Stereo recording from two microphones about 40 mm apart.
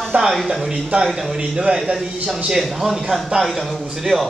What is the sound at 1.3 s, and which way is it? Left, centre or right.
A man's voice, centre.